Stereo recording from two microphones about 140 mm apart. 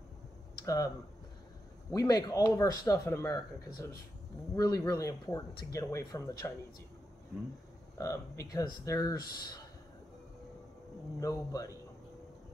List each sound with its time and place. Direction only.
0.7 s speech: 25° left (ahead or behind)
8.0 s speech: 25° left (ahead or behind)
11.1 s speech: 25° left (ahead or behind)